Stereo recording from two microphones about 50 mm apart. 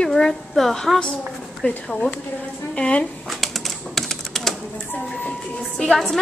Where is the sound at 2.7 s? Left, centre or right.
Left.